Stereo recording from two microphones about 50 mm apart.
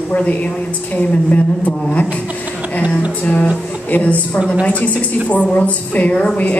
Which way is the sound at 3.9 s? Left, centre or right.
Left.